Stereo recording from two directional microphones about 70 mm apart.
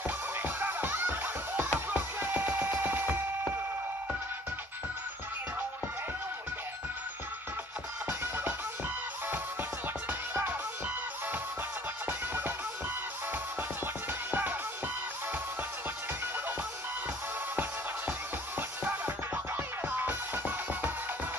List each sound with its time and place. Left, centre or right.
0.0 s music: right
10.0 s music: right
12.1 s music: right
14.3 s music: right
18.9 s music: right